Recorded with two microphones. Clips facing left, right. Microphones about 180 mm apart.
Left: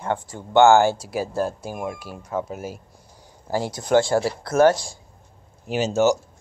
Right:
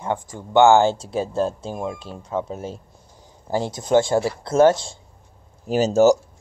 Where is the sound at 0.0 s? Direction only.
15° right (ahead or behind).